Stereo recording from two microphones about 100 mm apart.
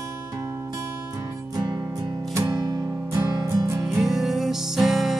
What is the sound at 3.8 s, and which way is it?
Music, 5° right (ahead or behind).